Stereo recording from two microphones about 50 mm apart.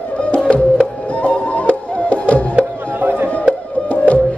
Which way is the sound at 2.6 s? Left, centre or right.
Right.